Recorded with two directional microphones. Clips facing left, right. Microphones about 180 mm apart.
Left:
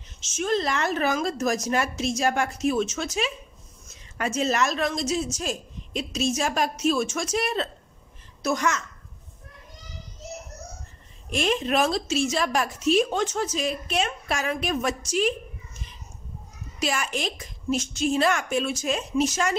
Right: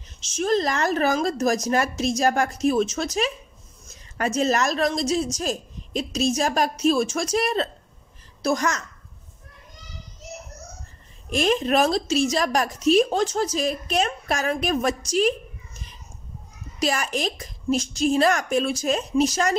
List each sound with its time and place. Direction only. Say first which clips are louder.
0.2 s a woman's voice: right 3 dB; 35° right (ahead or behind)
11.3 s a woman's voice: right 3 dB; 40° right (ahead or behind)
16.8 s a woman's voice: right 3 dB; 40° right (ahead or behind)